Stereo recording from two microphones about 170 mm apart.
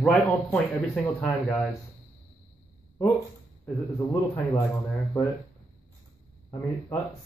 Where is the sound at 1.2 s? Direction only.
10° left (ahead or behind).